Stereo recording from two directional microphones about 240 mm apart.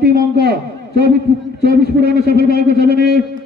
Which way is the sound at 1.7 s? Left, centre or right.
Left.